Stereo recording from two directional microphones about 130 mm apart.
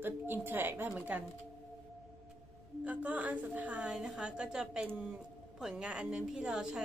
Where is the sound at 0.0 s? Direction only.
15° right (ahead or behind).